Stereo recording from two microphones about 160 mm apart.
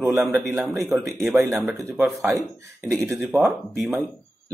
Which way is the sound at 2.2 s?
20° right (ahead or behind).